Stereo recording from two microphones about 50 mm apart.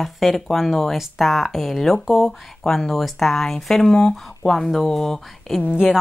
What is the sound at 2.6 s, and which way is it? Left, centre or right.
Speech, centre.